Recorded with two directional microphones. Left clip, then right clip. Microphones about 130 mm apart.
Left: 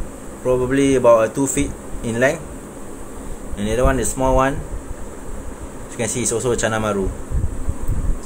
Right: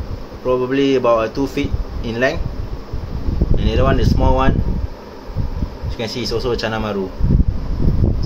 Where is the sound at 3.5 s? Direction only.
Centre (ahead or behind).